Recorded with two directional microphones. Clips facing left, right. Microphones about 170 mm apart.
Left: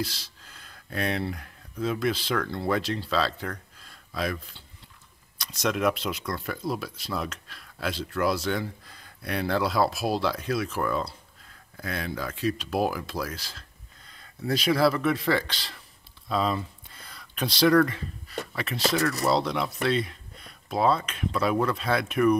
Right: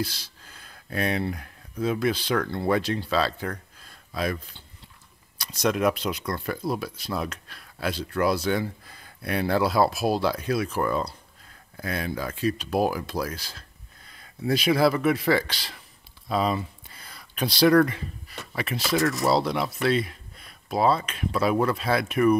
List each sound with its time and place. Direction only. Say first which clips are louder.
0.0 s speech: right 2 dB; centre (ahead or behind)
5.4 s speech: right 2 dB; centre (ahead or behind)
14.7 s speech: right 1 dB; 15° right (ahead or behind)